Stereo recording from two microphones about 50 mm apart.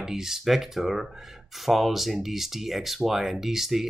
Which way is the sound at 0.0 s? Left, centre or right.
Centre.